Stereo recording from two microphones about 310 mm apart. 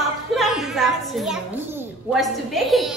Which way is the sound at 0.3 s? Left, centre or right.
Centre.